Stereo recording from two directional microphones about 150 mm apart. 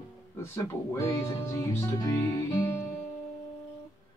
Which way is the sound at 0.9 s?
20° left (ahead or behind).